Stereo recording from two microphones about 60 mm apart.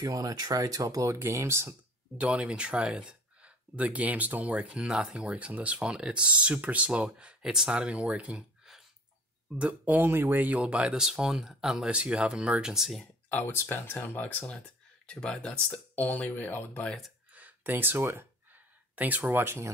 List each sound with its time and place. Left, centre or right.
0.0 s speech: right
2.1 s speech: centre
9.6 s speech: right
9.9 s speech: right
10.3 s speech: right
10.6 s speech: centre
12.7 s speech: centre
13.0 s a sound: left
13.5 s speech: left
15.0 s speech: centre; by 16.8 s left
17.3 s a sound: right
18.9 s speech: right